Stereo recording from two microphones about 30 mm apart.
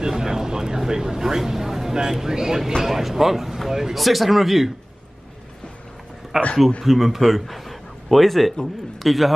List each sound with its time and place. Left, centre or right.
0.0 s speech: right; by 4.7 s centre
6.3 s a man's voice: centre